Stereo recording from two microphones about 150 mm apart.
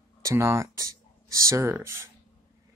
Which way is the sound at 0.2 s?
20° right (ahead or behind).